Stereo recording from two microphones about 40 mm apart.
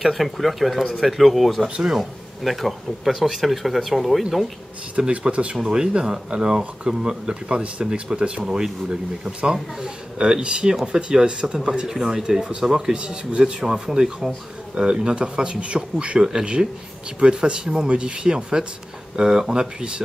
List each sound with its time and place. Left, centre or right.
0.0 s speech: centre
1.8 s speech: centre
2.4 s speech: centre
4.9 s speech: right
14.8 s speech: right